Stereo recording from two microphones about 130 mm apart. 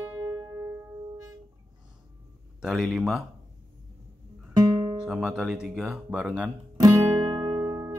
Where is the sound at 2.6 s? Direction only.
5° right (ahead or behind).